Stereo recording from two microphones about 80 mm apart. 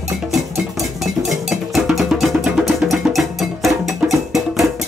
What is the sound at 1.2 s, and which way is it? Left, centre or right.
Music, centre.